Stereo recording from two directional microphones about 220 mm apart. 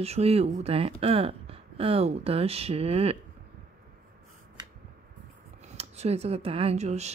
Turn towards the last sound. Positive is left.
turn(degrees=-30)  # may be behind; listen again after turning